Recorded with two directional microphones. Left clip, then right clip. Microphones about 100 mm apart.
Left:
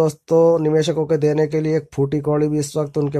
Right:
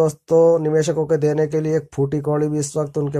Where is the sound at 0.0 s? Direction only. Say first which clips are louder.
Even; 25° left (ahead or behind).